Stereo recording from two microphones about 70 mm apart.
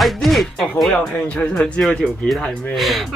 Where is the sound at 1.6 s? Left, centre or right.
Centre.